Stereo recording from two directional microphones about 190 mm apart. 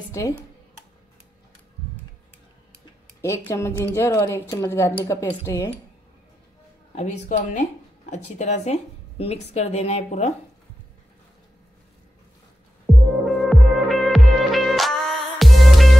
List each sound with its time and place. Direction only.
0.2 s a woman's voice: 15° left (ahead or behind)
3.2 s a woman's voice: 15° left (ahead or behind)
7.0 s a woman's voice: 40° left (ahead or behind)
13.2 s music: centre (ahead or behind)